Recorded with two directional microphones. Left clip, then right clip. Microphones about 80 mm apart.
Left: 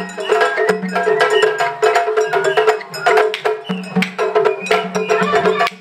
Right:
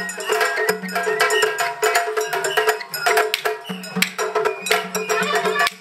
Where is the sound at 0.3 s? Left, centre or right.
Centre.